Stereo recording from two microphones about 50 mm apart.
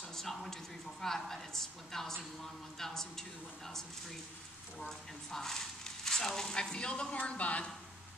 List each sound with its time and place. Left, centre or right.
0.1 s speech: centre; by 7.6 s left